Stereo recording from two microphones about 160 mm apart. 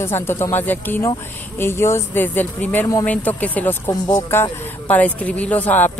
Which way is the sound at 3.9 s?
20° left (ahead or behind).